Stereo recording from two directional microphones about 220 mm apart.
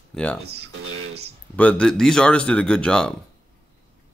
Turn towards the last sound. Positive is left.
turn(degrees=5)  # may be behind; listen again after turning